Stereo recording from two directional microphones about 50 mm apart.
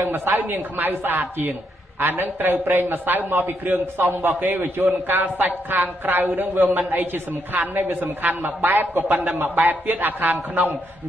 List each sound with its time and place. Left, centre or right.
0.1 s a man's voice: right